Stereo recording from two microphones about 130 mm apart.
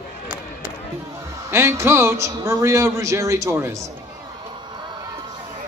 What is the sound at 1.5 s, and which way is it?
A man's voice, 20° right (ahead or behind).